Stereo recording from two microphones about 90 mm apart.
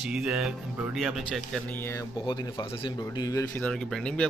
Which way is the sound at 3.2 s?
45° left (ahead or behind).